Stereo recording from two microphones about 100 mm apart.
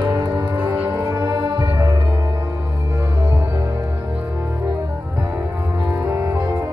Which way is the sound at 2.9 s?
30° right (ahead or behind).